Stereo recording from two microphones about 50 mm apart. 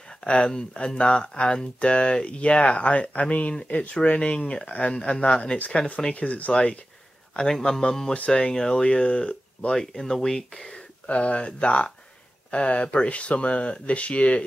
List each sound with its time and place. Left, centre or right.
0.2 s speech: centre
7.6 s speech: centre
11.1 s speech: left